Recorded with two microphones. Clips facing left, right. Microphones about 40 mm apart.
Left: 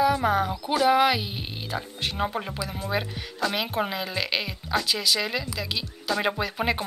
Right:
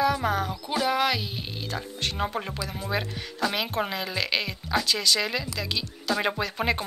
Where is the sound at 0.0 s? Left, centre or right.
Centre.